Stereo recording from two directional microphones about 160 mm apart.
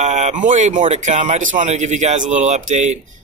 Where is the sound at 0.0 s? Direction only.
45° right (ahead or behind).